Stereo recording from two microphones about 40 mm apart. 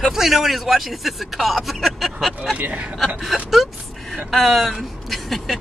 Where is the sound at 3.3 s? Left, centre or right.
Centre.